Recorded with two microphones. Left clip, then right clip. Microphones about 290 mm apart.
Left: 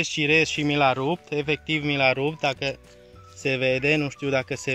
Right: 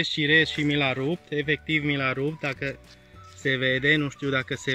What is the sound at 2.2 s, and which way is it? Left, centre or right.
Speech, left.